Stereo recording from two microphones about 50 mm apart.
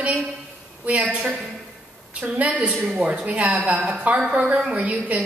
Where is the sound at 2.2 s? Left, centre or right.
Right.